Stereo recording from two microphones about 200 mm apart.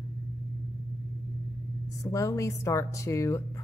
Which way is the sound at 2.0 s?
15° left (ahead or behind).